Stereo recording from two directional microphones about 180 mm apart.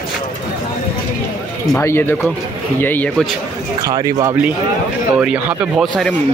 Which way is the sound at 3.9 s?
20° right (ahead or behind).